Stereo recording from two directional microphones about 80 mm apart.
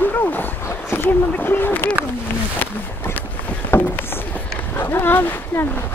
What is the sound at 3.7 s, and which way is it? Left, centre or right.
Boat, left.